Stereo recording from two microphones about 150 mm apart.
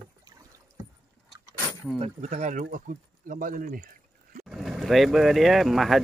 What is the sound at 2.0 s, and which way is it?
Speech, 45° right (ahead or behind).